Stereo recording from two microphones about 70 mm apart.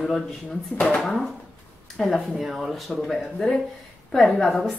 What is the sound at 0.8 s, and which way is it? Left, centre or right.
Speech, centre.